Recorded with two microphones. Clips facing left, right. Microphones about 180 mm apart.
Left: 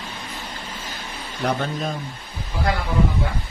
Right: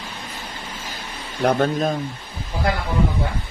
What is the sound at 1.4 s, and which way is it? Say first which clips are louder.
Speech: right 6 dB; 50° right (ahead or behind).